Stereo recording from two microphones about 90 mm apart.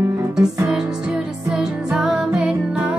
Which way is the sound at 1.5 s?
10° right (ahead or behind).